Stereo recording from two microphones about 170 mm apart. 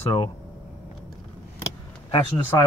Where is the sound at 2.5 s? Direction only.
20° left (ahead or behind).